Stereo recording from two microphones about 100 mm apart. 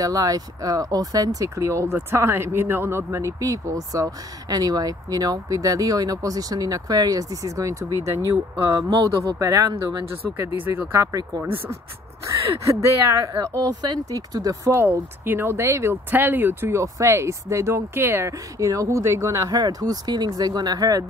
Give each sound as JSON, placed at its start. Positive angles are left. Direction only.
{"t": 0.0, "sound": "speech", "side_deg": -40}
{"t": 10.2, "sound": "speech", "side_deg": -25}
{"t": 13.2, "sound": "speech", "side_deg": -40}
{"t": 14.8, "sound": "speech", "side_deg": -20}
{"t": 19.6, "sound": "speech", "side_deg": -40}